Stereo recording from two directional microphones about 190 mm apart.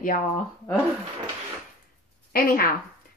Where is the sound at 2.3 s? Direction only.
50° left (ahead or behind).